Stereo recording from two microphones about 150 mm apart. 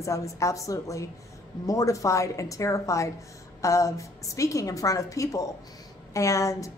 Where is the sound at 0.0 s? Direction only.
20° left (ahead or behind).